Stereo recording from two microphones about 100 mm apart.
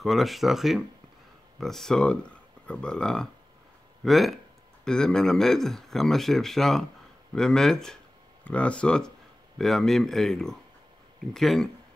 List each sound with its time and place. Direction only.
0.0 s a man's voice: centre (ahead or behind)